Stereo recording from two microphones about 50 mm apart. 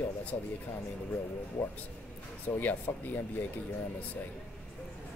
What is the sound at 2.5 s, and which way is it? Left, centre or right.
Speech, left.